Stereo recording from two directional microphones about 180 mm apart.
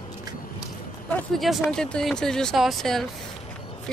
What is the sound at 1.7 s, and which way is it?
Speech, 5° left (ahead or behind).